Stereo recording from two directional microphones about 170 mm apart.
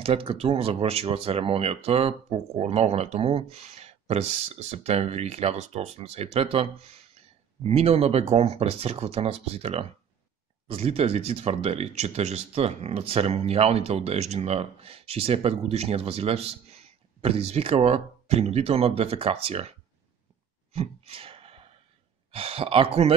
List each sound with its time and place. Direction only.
0.0 s speech: 35° right (ahead or behind)
20.7 s a sound: 35° right (ahead or behind)
22.3 s speech: 35° right (ahead or behind)